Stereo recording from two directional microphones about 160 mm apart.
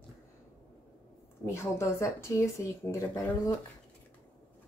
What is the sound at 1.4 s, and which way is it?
A woman's voice, 15° left (ahead or behind).